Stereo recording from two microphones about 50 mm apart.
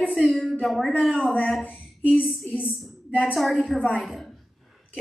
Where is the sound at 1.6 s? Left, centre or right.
Left.